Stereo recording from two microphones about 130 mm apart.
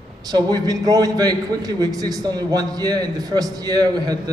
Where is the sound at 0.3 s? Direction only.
30° right (ahead or behind).